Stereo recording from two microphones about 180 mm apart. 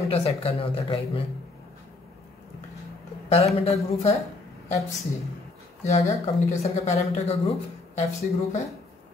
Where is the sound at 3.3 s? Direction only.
35° left (ahead or behind).